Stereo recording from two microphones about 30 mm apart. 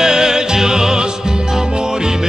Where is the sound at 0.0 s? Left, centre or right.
Right.